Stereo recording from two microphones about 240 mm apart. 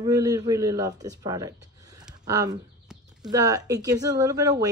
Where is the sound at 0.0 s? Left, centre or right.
Centre.